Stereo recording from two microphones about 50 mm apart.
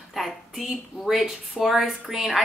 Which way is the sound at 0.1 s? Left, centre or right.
Centre.